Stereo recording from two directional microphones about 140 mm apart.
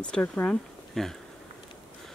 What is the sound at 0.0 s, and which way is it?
Speech, 10° left (ahead or behind).